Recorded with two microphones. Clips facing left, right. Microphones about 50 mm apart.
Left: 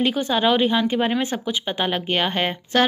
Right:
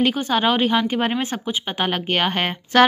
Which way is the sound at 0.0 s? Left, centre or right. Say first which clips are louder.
Right 1 dB; right.